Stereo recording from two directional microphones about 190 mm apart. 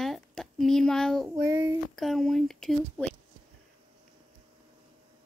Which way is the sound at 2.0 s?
Centre (ahead or behind).